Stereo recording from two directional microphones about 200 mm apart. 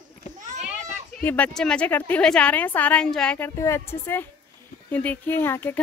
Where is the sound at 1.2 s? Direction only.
10° left (ahead or behind).